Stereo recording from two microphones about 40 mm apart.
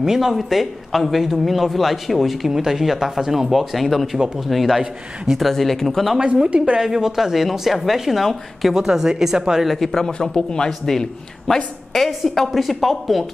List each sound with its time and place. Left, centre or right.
0.0 s speech: centre
6.1 s a woman's voice: right
6.8 s speech: centre
9.7 s a man's voice: centre
10.7 s a man's voice: centre